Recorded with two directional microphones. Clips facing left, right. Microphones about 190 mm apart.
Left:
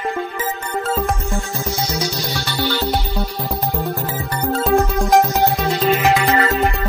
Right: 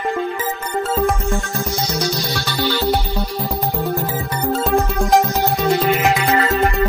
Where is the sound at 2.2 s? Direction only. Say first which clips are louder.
Right 1 dB; 15° left (ahead or behind).